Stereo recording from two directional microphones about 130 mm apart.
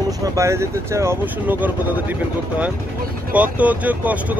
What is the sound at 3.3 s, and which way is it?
Speech, 10° right (ahead or behind).